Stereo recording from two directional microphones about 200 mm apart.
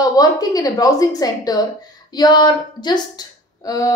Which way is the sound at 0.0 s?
20° left (ahead or behind).